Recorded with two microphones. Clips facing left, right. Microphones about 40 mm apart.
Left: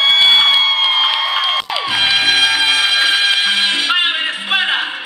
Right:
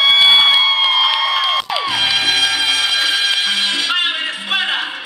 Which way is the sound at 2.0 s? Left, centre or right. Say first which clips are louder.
Left 4 dB; centre.